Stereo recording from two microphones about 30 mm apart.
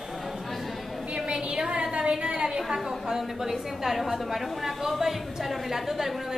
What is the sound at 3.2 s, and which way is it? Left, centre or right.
A woman's voice, centre.